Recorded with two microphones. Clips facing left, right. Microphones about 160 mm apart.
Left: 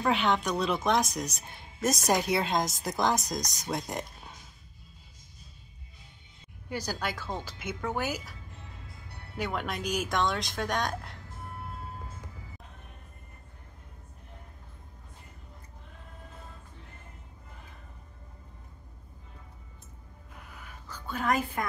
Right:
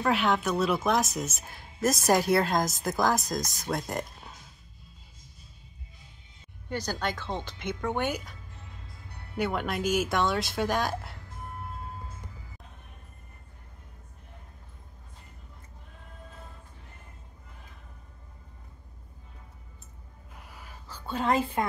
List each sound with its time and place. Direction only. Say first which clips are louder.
0.0 s speech: right 1 dB; centre (ahead or behind)
6.7 s speech: right 2 dB; 10° left (ahead or behind)
9.4 s speech: right 4 dB; centre (ahead or behind)
20.9 s a woman's voice: right 2 dB; 30° right (ahead or behind)